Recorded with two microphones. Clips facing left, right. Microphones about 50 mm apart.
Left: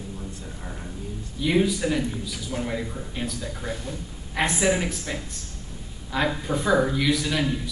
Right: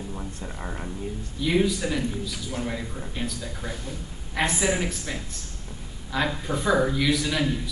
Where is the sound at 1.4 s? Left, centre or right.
Centre.